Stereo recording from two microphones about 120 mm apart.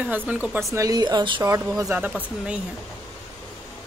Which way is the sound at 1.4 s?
25° right (ahead or behind).